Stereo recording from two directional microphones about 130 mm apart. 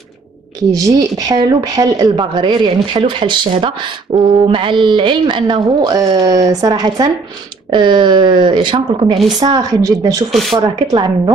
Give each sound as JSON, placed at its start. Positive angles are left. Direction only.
{"t": 0.7, "sound": "a woman's voice", "side_deg": -25}
{"t": 10.3, "sound": "speech", "side_deg": 0}
{"t": 10.6, "sound": "a woman's voice", "side_deg": -30}